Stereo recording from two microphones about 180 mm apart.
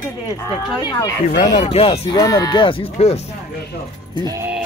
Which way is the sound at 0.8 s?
25° left (ahead or behind).